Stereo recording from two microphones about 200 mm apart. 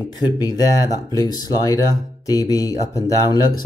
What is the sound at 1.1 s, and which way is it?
Speech, 20° left (ahead or behind).